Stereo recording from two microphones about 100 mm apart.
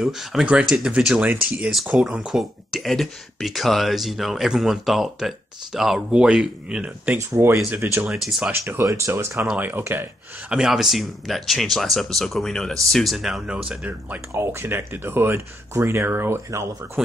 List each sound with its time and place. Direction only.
0.0 s speech: 5° right (ahead or behind)
7.2 s speech: 25° right (ahead or behind)
7.7 s speech: 20° right (ahead or behind)
8.1 s speech: 5° right (ahead or behind)
8.5 s speech: 25° right (ahead or behind)
10.5 s speech: 5° right (ahead or behind)
14.3 s speech: 25° right (ahead or behind)